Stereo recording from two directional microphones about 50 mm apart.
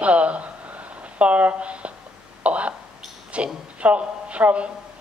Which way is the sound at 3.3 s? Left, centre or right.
Right.